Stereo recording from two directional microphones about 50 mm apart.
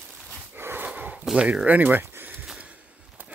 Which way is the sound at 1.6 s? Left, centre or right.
Right.